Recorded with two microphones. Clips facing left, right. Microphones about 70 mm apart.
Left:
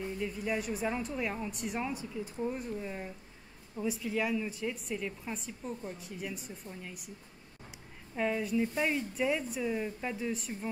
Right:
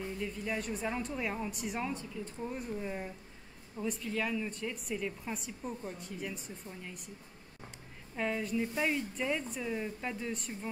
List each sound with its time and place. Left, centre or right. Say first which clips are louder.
0.2 s a woman's voice: left 3 dB; centre
8.2 s a woman's voice: left 3 dB; centre